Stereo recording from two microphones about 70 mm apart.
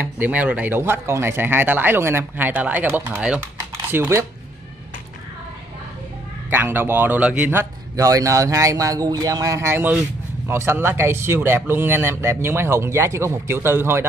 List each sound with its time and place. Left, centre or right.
0.0 s speech: right
0.7 s speech: right; by 3.3 s centre
3.9 s speech: right
6.5 s speech: right
7.2 s speech: centre
7.9 s speech: right
10.5 s speech: right